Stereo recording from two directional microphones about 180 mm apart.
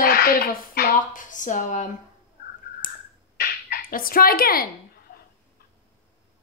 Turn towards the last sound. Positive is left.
turn(degrees=55)  # may be behind; listen again after turning